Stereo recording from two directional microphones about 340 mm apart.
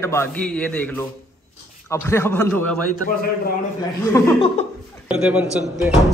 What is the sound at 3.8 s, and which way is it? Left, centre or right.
Speech, centre.